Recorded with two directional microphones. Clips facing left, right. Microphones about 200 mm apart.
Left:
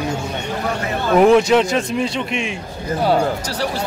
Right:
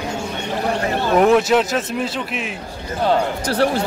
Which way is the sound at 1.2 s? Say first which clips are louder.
Left 3 dB; centre (ahead or behind).